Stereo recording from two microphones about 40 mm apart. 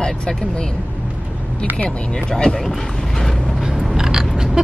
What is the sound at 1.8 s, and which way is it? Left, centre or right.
Speech, centre.